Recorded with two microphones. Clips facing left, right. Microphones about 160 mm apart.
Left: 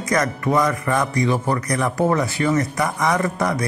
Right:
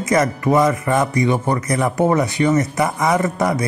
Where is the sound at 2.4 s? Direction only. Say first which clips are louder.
Right 4 dB; centre (ahead or behind).